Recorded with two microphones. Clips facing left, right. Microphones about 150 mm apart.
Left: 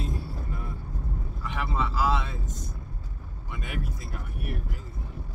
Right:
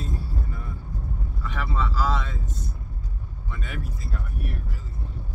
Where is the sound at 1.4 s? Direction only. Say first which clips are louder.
Even; 15° left (ahead or behind).